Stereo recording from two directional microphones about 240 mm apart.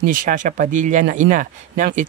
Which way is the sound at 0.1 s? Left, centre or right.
Right.